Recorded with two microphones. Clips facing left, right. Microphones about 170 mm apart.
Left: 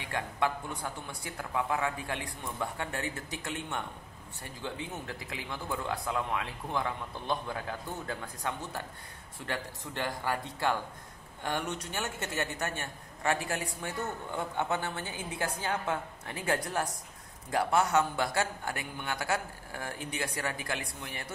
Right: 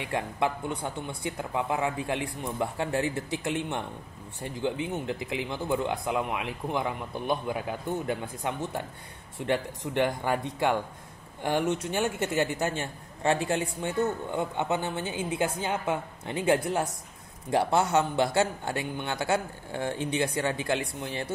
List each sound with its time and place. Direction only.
0.0 s a man's voice: 20° right (ahead or behind)